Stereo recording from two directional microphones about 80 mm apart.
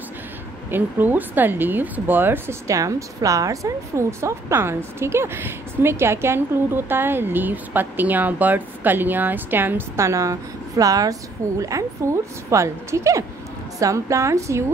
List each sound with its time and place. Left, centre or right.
0.7 s speech: right
2.7 s a woman's voice: right